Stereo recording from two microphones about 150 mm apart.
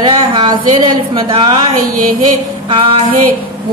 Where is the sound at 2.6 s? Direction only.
35° right (ahead or behind).